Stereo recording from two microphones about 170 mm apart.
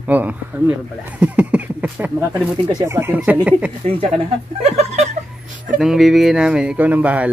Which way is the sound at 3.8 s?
35° right (ahead or behind).